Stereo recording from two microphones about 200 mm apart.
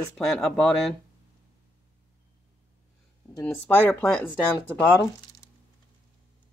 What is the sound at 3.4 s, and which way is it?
Speech, 10° left (ahead or behind).